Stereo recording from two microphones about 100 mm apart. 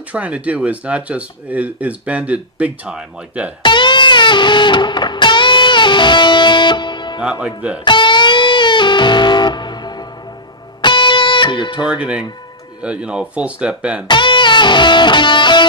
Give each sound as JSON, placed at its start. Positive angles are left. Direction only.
{"t": 0.1, "sound": "speech", "side_deg": -15}
{"t": 3.6, "sound": "music", "side_deg": 50}
{"t": 7.2, "sound": "speech", "side_deg": -10}
{"t": 7.8, "sound": "music", "side_deg": 50}
{"t": 11.8, "sound": "speech", "side_deg": -10}
{"t": 14.0, "sound": "music", "side_deg": 50}